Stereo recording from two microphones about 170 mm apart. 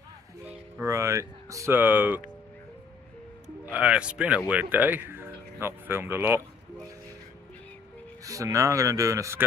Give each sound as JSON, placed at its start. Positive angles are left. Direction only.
{"t": 0.5, "sound": "speech", "side_deg": -15}
{"t": 3.6, "sound": "speech", "side_deg": -10}
{"t": 8.2, "sound": "speech", "side_deg": -20}